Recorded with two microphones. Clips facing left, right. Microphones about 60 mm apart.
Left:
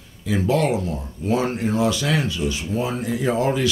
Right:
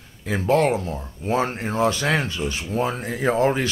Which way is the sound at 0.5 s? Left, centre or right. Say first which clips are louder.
Right 3 dB; right.